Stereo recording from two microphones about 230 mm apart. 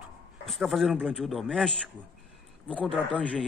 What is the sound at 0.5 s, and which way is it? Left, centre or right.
Speech, centre.